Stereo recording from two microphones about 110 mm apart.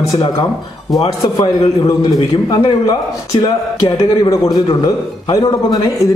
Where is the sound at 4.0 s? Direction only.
35° left (ahead or behind).